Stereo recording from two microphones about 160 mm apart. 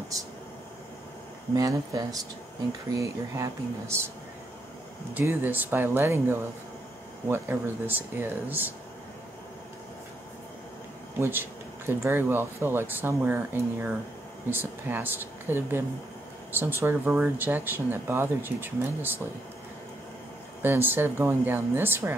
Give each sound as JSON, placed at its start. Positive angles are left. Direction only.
{"t": 1.5, "sound": "speech", "side_deg": -20}
{"t": 5.1, "sound": "speech", "side_deg": -15}
{"t": 11.1, "sound": "speech", "side_deg": -15}
{"t": 16.8, "sound": "speech", "side_deg": -10}
{"t": 20.6, "sound": "speech", "side_deg": -15}